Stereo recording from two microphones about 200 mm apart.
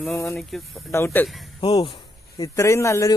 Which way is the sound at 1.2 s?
Centre (ahead or behind).